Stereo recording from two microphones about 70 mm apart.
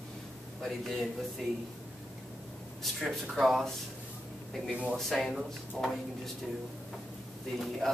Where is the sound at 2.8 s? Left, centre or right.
Centre.